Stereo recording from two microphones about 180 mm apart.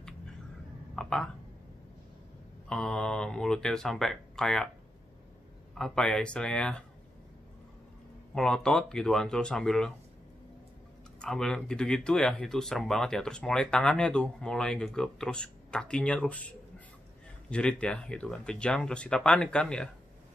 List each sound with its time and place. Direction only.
0.9 s a sound: 5° left (ahead or behind)
2.7 s speech: 5° left (ahead or behind)
5.8 s speech: 5° left (ahead or behind)
8.4 s speech: 5° left (ahead or behind)
11.1 s speech: 5° left (ahead or behind)